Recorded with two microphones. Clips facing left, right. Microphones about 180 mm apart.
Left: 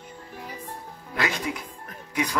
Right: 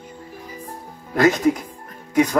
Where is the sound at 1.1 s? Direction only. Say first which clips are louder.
Right 12 dB; 45° right (ahead or behind).